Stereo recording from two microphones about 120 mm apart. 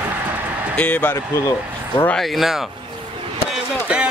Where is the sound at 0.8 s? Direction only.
15° left (ahead or behind).